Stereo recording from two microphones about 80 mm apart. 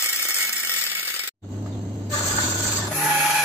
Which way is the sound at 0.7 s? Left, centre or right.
Right.